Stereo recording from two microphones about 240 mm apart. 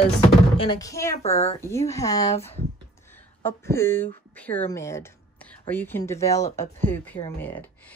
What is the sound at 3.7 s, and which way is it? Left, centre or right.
Speech, centre.